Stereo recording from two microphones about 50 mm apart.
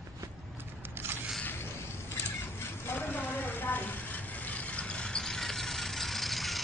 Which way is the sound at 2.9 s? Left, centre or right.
Left.